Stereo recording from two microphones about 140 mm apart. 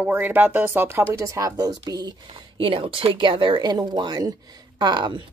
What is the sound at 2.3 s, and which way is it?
Speech, 40° right (ahead or behind).